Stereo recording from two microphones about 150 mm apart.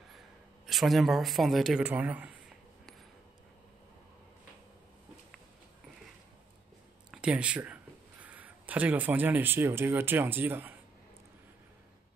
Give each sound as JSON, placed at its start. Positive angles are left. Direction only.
{"t": 0.7, "sound": "speech", "side_deg": 0}
{"t": 7.1, "sound": "speech", "side_deg": -5}